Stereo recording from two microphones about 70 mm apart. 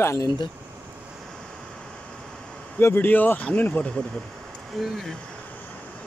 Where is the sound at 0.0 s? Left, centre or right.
Left.